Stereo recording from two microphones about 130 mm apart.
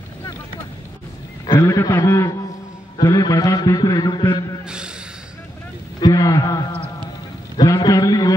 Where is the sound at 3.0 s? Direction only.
35° left (ahead or behind).